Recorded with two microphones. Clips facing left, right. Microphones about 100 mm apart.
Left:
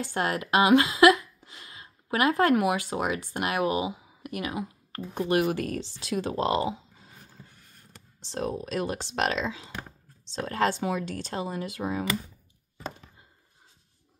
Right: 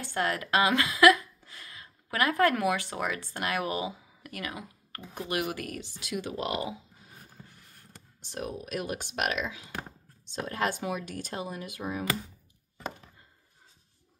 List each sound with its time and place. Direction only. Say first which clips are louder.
0.0 s a woman's voice: left 2 dB; 20° left (ahead or behind)
8.3 s speech: left 5 dB; 30° left (ahead or behind)